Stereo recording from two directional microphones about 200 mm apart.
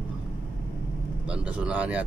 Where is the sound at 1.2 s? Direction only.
5° right (ahead or behind).